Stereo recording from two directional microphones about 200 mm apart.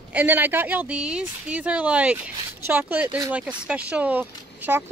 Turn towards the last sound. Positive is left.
turn(degrees=-10)  # may be behind; listen again after turning